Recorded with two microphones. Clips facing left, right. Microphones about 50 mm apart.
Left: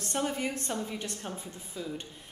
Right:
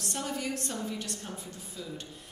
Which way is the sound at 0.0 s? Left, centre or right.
Left.